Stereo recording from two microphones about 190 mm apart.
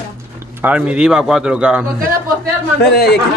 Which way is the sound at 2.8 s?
55° left (ahead or behind).